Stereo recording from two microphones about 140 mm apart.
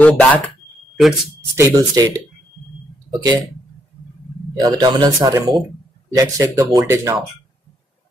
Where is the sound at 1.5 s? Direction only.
20° right (ahead or behind).